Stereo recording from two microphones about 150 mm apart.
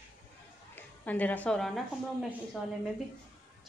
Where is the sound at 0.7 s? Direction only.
10° left (ahead or behind).